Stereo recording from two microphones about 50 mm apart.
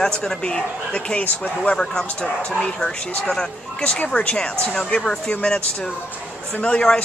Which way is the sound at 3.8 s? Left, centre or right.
Left.